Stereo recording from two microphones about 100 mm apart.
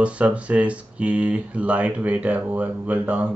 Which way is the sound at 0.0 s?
10° right (ahead or behind).